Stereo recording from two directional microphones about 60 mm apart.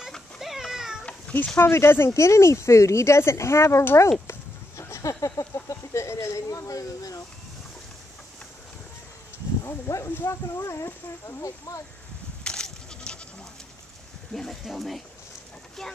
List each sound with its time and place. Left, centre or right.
0.4 s cat: centre
1.3 s a sound: centre
1.6 s speech: left
9.7 s speech: left
12.4 s goat: centre
14.3 s speech: centre